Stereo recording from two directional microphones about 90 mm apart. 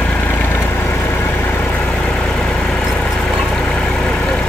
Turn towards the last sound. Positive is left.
turn(degrees=15)  # may be behind; listen again after turning